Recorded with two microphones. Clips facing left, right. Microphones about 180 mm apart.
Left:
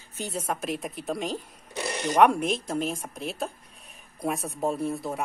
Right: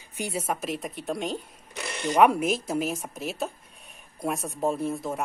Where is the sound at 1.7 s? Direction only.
35° left (ahead or behind).